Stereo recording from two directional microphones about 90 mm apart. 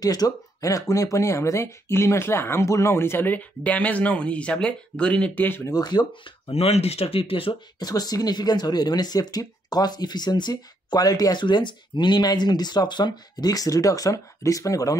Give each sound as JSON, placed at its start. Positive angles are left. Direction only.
{"t": 0.0, "sound": "speech", "side_deg": 45}
{"t": 5.7, "sound": "speech", "side_deg": 50}
{"t": 6.6, "sound": "speech", "side_deg": 90}
{"t": 7.8, "sound": "speech", "side_deg": 45}